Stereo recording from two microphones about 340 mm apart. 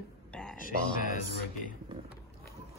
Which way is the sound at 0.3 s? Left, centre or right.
Centre.